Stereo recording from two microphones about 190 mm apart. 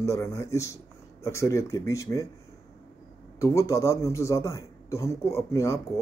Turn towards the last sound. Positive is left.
turn(degrees=15)  # may be behind; listen again after turning